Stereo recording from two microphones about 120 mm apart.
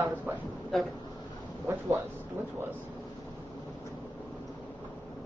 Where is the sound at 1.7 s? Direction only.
15° right (ahead or behind).